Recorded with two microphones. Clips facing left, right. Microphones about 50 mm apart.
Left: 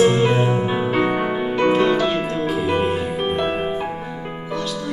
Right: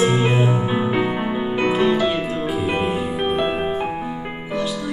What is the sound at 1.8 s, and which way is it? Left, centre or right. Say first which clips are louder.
Music: even; centre.